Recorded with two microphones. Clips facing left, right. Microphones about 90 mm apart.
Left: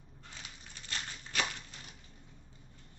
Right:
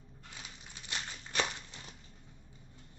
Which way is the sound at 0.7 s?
15° right (ahead or behind).